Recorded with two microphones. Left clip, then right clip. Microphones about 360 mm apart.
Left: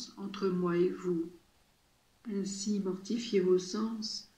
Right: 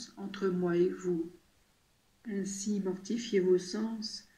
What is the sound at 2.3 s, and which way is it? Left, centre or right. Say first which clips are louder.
Speech: even; centre.